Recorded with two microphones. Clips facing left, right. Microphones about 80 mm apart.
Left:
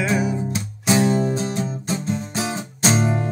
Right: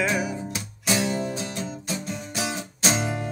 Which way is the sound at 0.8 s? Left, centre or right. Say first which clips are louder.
Left 7 dB; left.